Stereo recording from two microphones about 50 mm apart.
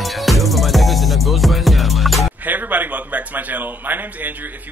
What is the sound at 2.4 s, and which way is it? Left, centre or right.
A man's voice, right.